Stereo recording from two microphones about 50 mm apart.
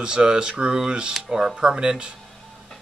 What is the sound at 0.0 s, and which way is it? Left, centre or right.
Speech, centre.